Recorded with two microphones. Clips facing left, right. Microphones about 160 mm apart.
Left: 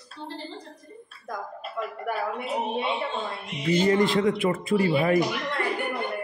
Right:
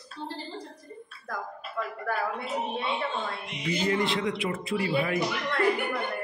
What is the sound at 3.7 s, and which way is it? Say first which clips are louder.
A man's voice: left 6 dB; 45° left (ahead or behind).